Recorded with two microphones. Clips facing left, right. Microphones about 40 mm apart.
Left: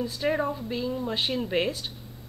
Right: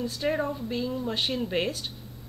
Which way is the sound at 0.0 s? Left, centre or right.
Centre.